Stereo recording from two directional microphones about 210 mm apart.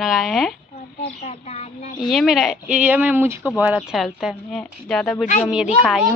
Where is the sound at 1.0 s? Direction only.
30° left (ahead or behind).